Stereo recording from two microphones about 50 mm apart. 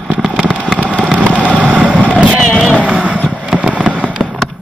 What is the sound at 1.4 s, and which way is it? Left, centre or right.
Vehicle, right.